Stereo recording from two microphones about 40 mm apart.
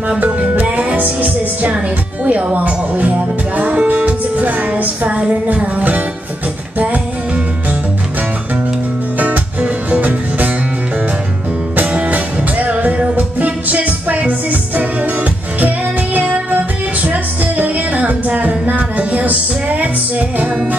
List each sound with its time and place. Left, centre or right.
0.2 s music: right
2.2 s speech: right
9.2 s music: right
11.9 s music: right